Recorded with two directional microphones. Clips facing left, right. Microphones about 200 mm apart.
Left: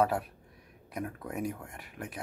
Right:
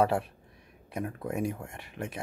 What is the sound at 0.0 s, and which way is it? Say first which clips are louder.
Speech: right 2 dB; 25° right (ahead or behind).